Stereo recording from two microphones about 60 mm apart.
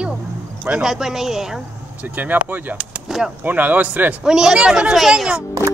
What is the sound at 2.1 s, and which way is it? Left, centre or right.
Speech, right.